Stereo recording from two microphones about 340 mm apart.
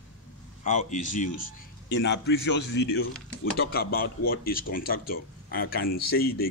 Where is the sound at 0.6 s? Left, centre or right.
Left.